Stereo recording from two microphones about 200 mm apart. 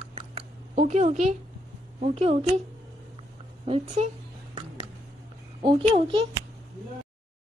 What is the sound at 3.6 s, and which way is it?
Speech, 30° right (ahead or behind).